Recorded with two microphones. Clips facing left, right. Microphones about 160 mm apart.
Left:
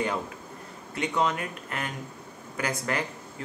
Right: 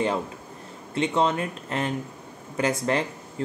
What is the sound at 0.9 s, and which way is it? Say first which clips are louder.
Speech: right 4 dB; 25° right (ahead or behind).